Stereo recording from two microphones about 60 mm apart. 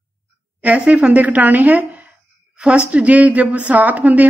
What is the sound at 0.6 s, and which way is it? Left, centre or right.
A woman's voice, right.